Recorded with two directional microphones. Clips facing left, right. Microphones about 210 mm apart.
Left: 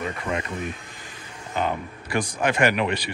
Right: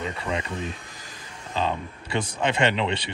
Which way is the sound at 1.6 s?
25° right (ahead or behind).